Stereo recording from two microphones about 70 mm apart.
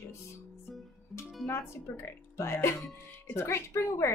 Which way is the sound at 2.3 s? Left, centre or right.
Left.